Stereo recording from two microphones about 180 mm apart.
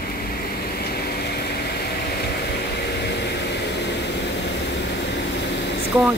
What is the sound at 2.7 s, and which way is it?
Vehicle, 70° left (ahead or behind).